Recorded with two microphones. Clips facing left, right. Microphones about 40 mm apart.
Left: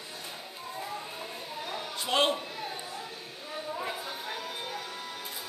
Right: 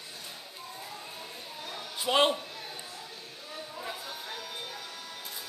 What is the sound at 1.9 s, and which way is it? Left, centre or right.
Speech, centre.